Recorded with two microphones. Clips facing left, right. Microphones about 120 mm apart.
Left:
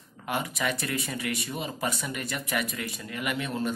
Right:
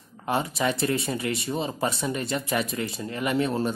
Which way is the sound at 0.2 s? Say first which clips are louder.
Right 5 dB; 30° right (ahead or behind).